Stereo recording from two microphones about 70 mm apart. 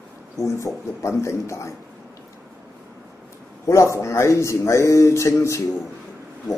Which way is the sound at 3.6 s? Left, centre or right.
Left.